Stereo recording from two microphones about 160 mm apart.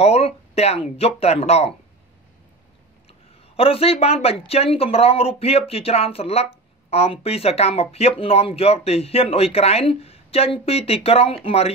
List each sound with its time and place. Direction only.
0.0 s speech: 40° left (ahead or behind)
3.5 s speech: 35° left (ahead or behind)